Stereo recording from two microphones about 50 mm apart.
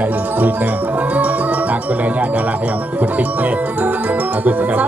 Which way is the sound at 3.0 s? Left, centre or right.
Right.